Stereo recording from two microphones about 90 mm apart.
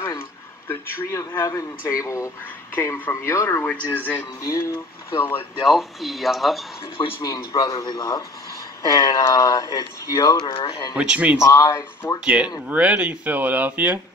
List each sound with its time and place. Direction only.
0.7 s a man's voice: 30° left (ahead or behind)
4.4 s a man's voice: 40° left (ahead or behind)
5.6 s speech: centre (ahead or behind)
7.2 s a man's voice: 50° left (ahead or behind)
10.5 s speech: 70° left (ahead or behind)
11.0 s speech: 15° right (ahead or behind)
11.4 s a man's voice: 35° left (ahead or behind)
12.6 s speech: 15° right (ahead or behind)